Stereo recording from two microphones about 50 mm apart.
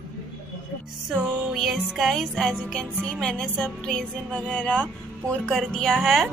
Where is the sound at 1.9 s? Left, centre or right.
Centre.